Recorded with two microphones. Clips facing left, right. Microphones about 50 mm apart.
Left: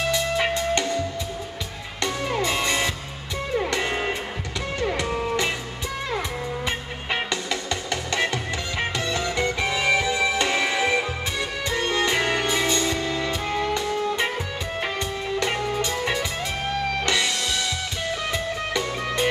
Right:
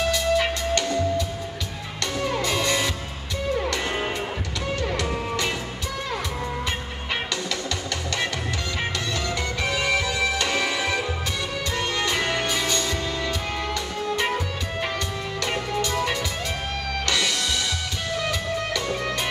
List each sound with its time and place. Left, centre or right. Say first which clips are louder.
0.1 s music: right 1 dB; left
2.4 s music: left 1 dB; left
9.1 s music: left 3 dB; left
13.7 s music: left 2 dB; left
15.3 s music: left 2 dB; left